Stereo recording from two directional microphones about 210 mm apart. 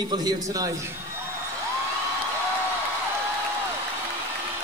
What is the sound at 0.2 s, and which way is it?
Speech, 15° right (ahead or behind).